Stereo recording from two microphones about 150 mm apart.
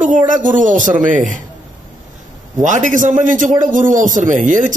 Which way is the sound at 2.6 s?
55° right (ahead or behind).